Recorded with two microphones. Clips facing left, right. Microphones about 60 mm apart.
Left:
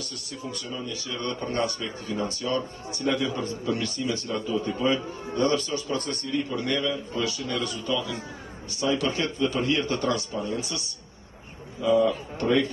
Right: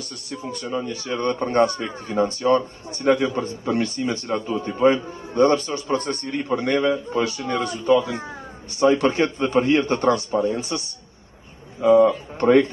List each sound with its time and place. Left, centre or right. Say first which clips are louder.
0.3 s a man's voice: right 8 dB; right
11.8 s a man's voice: right 7 dB; right